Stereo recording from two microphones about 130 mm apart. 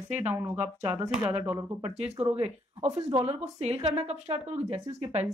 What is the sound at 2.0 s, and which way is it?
Speech, 50° right (ahead or behind).